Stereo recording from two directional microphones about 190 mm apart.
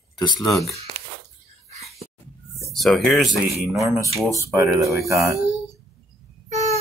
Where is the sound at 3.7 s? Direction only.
15° right (ahead or behind).